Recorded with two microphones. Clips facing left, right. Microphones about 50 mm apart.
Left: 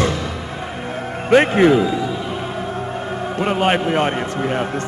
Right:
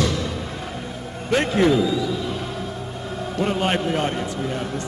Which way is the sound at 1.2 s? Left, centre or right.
Left.